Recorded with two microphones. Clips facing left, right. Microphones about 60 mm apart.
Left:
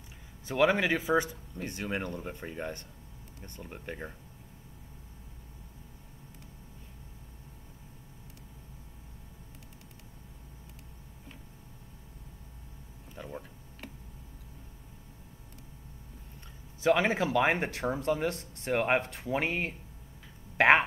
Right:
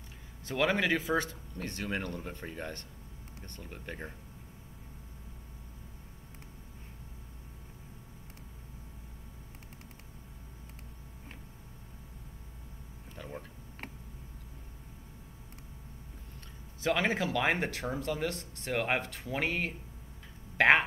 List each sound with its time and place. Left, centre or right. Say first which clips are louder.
0.5 s speech: left 3 dB; centre
13.2 s a sound: left 2 dB; centre
16.8 s speech: left 4 dB; left